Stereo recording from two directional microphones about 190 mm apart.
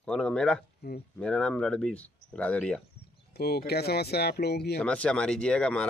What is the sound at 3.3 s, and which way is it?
Speech, 60° left (ahead or behind).